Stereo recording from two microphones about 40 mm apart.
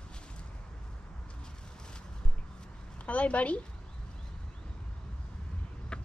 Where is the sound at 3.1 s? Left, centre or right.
Left.